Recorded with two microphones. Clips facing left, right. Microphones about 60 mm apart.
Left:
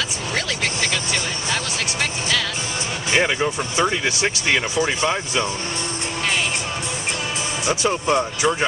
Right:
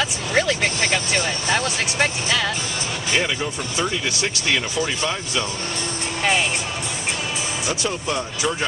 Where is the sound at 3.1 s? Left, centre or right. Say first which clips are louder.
Left 4 dB; left.